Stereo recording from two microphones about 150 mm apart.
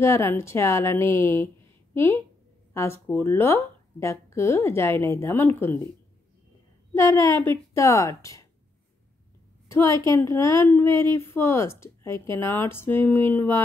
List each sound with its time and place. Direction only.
0.0 s a woman's voice: 20° left (ahead or behind)
2.7 s a woman's voice: 15° left (ahead or behind)
6.9 s a woman's voice: 15° left (ahead or behind)
9.7 s a woman's voice: 20° left (ahead or behind)